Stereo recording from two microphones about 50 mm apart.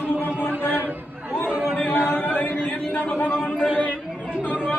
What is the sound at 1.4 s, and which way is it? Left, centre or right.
Chatter, left.